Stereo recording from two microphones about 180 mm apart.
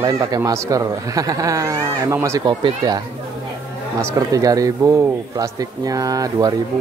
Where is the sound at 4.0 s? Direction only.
15° right (ahead or behind).